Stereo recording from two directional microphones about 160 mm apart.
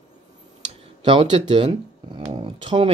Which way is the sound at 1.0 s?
30° right (ahead or behind).